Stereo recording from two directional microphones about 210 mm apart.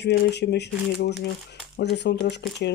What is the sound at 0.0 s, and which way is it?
Speech, 55° left (ahead or behind).